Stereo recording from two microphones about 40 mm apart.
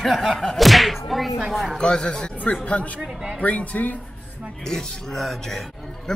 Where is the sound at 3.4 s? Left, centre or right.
Left.